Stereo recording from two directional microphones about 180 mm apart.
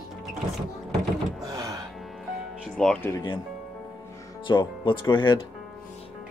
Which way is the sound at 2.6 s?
5° left (ahead or behind).